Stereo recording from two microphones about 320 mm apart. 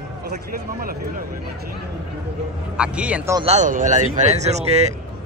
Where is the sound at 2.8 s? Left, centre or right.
Centre.